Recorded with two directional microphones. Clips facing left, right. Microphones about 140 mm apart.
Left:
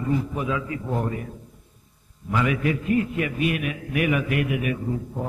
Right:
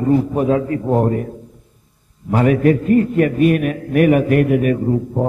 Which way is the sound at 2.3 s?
45° right (ahead or behind).